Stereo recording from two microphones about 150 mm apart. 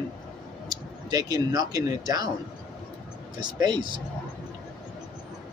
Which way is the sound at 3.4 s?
30° right (ahead or behind).